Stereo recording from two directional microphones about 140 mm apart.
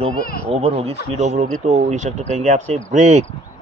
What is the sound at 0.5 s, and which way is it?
Speech, 45° right (ahead or behind).